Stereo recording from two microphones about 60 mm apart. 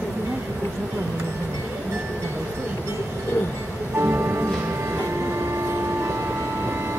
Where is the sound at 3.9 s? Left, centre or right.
Right.